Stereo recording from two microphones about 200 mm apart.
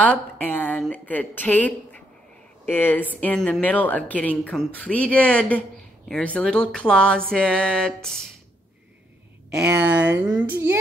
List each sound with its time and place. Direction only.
0.0 s speech: 5° left (ahead or behind)
9.8 s speech: 60° right (ahead or behind)
10.1 s a child's voice: 10° right (ahead or behind)